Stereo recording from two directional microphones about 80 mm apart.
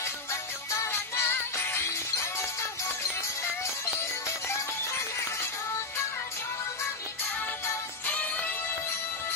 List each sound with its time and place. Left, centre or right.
0.0 s music: left
8.1 s music: centre